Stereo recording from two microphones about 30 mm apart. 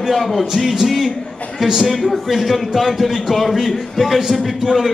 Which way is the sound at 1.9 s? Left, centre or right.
Centre.